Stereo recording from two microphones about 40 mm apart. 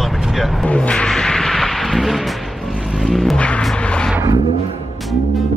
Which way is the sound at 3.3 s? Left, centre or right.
Left.